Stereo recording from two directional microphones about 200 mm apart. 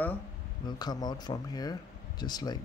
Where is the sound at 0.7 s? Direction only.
20° left (ahead or behind).